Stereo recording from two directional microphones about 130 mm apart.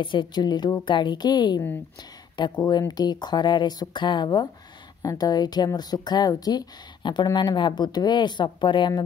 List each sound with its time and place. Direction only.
0.0 s speech: 40° left (ahead or behind)